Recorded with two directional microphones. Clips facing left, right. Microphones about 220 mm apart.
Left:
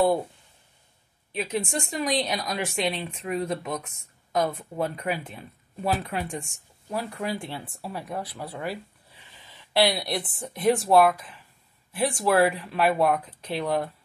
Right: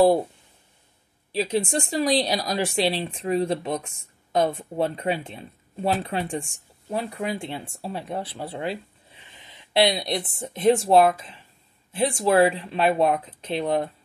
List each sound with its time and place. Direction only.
1.3 s a woman's voice: 30° right (ahead or behind)